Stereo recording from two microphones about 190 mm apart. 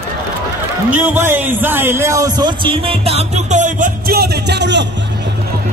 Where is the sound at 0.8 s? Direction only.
10° right (ahead or behind); by 4.8 s 65° right (ahead or behind).